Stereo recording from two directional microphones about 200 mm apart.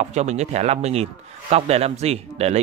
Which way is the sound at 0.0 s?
35° right (ahead or behind).